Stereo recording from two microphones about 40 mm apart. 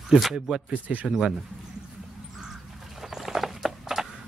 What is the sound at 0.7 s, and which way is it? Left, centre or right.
Speech, right.